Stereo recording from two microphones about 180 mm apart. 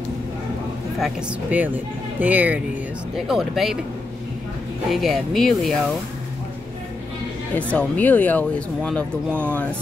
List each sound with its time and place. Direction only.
0.9 s speech: 5° right (ahead or behind)
4.8 s speech: centre (ahead or behind)
7.5 s speech: 10° left (ahead or behind)
9.3 s speech: 10° right (ahead or behind)